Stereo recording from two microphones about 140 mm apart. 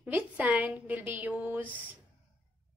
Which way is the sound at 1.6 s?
10° left (ahead or behind).